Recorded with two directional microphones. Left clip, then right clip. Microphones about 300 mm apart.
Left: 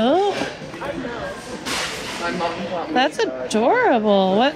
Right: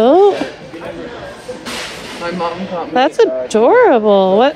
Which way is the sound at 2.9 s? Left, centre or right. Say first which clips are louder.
Right 9 dB; right.